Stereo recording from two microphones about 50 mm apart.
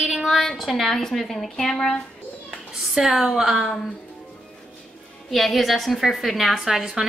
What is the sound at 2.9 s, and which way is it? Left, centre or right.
Speech, centre.